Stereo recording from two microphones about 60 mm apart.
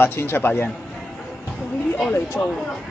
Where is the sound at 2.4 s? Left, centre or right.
Centre.